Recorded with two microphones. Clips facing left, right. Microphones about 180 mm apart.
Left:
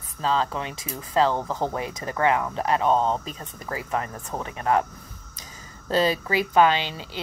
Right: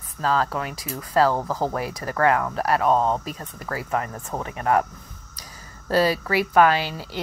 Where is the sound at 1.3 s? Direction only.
5° right (ahead or behind).